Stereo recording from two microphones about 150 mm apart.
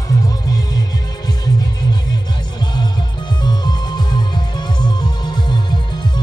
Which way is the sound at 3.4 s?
30° left (ahead or behind).